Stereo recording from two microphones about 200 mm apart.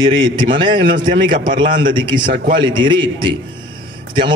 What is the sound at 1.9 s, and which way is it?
A man's voice, 25° right (ahead or behind).